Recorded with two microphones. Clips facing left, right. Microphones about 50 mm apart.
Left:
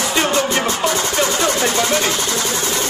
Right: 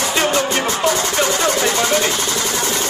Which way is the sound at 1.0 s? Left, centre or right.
Right.